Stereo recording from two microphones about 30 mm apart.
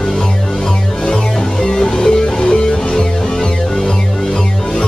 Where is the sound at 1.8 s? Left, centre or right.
Centre.